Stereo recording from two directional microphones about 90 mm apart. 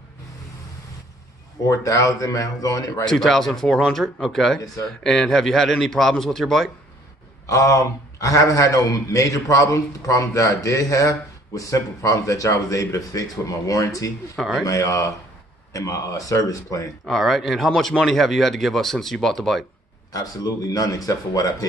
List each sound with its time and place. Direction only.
1.7 s a man's voice: 35° left (ahead or behind)
3.1 s speech: 5° left (ahead or behind)
7.4 s a man's voice: 35° left (ahead or behind)
17.0 s speech: centre (ahead or behind)
20.1 s a man's voice: 40° left (ahead or behind)